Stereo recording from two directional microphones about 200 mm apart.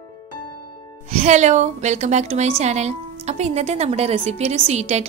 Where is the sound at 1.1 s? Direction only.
35° right (ahead or behind).